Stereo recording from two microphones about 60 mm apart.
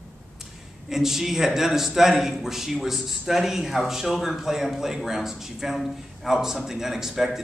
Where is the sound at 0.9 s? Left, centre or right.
Centre.